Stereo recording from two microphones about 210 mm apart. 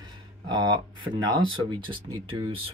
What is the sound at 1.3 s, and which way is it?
Speech, 20° right (ahead or behind).